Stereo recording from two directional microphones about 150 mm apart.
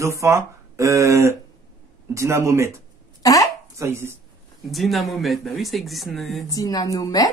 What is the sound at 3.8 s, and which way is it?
Speech, 20° right (ahead or behind).